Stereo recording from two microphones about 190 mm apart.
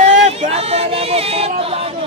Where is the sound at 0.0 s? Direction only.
35° right (ahead or behind).